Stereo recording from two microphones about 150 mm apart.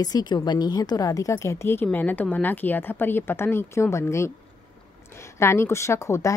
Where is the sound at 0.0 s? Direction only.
25° left (ahead or behind).